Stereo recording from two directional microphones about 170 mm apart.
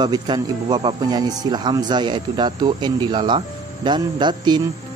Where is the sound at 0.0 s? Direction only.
25° right (ahead or behind).